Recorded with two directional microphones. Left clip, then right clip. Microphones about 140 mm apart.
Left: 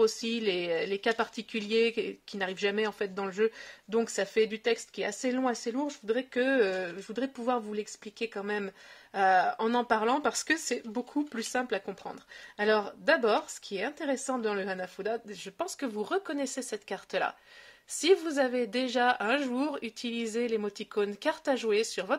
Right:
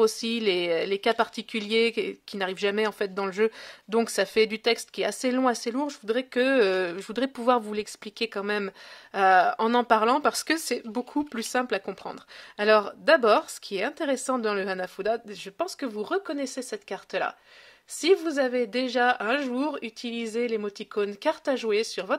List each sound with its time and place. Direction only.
0.0 s a woman's voice: 35° right (ahead or behind)